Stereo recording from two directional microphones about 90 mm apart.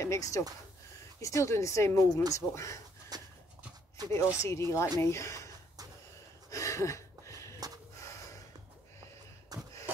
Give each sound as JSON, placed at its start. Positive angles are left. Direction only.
{"t": 0.0, "sound": "speech", "side_deg": 35}
{"t": 3.1, "sound": "dog", "side_deg": -45}
{"t": 4.1, "sound": "speech", "side_deg": 30}
{"t": 6.5, "sound": "a sound", "side_deg": 35}
{"t": 8.0, "sound": "gasp", "side_deg": 35}
{"t": 9.5, "sound": "a sound", "side_deg": -45}